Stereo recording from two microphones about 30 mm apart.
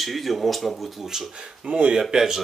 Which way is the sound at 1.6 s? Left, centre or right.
Right.